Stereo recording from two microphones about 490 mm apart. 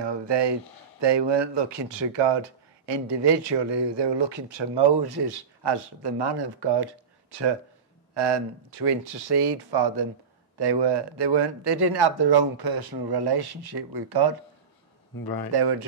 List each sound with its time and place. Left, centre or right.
0.0 s speech: right
15.2 s speech: left
15.5 s speech: right